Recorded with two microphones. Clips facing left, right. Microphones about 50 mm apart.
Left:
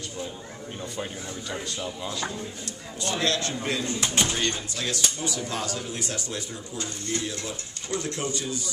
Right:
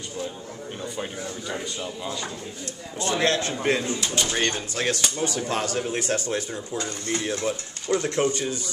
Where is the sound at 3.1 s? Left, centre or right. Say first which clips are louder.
Right 3 dB; right.